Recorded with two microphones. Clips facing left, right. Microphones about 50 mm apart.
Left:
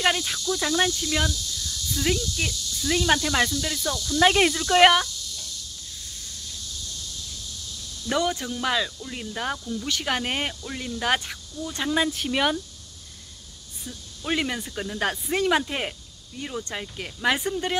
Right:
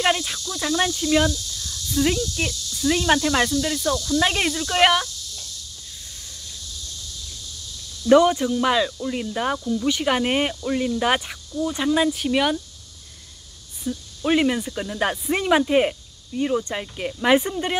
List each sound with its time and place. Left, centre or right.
0.0 s speech: centre
8.1 s speech: centre
11.9 s speech: centre
13.8 s speech: centre